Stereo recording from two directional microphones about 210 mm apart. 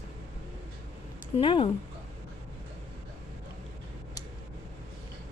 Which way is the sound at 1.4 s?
25° left (ahead or behind).